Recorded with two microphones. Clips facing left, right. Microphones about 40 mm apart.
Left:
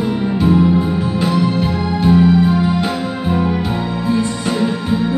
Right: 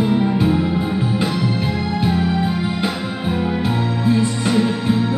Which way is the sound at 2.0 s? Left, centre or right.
Centre.